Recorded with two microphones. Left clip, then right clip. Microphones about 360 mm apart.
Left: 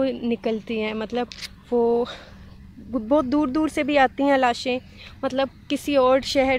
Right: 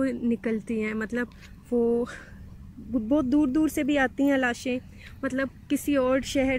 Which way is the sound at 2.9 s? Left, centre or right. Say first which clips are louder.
Left 5 dB; left.